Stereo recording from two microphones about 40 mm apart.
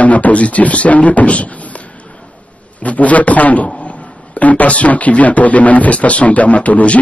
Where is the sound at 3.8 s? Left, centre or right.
Left.